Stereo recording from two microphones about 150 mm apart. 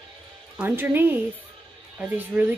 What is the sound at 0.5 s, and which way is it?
Speech, 15° right (ahead or behind).